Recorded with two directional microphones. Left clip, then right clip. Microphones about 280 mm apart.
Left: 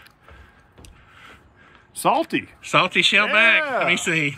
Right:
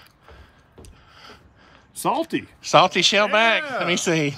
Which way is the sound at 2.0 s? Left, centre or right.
Centre.